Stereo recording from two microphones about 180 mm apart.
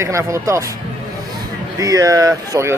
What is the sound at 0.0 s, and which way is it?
Speech, 15° right (ahead or behind).